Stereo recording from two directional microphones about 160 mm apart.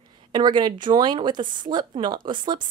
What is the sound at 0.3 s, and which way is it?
Speech, 30° right (ahead or behind).